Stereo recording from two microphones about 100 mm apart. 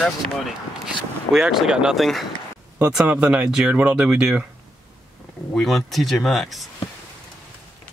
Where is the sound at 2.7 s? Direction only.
15° right (ahead or behind).